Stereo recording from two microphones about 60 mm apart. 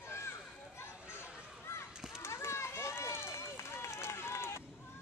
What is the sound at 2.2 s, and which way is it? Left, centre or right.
Run, left.